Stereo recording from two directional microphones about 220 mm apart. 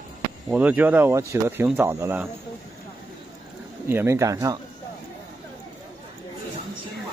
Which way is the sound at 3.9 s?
10° right (ahead or behind).